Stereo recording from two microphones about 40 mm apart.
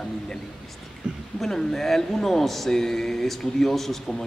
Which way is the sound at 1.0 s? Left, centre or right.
Right.